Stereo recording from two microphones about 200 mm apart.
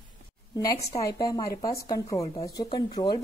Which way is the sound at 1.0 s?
20° left (ahead or behind).